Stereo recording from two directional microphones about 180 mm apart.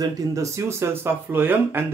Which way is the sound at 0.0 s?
15° right (ahead or behind).